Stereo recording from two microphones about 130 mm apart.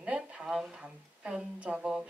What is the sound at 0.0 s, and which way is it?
A woman's voice, 10° right (ahead or behind).